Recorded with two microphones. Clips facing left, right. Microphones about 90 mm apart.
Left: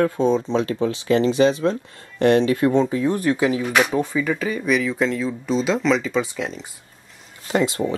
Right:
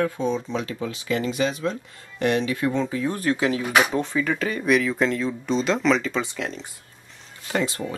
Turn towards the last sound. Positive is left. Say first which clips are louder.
# left 5 dB
turn(degrees=25)  # may be behind; listen again after turning